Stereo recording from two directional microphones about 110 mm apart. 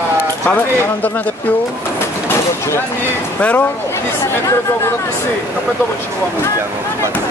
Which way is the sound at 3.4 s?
15° left (ahead or behind).